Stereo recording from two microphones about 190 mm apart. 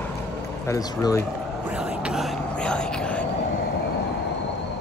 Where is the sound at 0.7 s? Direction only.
15° left (ahead or behind).